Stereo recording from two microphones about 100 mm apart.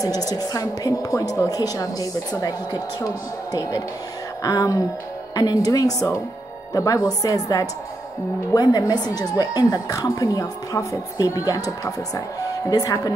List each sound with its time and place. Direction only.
0.0 s a woman's voice: 40° left (ahead or behind)
4.4 s a woman's voice: 40° left (ahead or behind)